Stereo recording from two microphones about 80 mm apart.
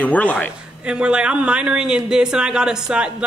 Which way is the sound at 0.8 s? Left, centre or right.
Centre.